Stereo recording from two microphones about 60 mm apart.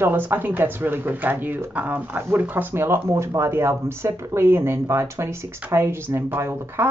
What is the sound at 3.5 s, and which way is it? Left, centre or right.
Speech, right.